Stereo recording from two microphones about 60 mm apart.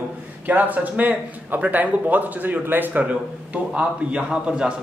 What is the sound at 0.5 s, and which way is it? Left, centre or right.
Speech, right.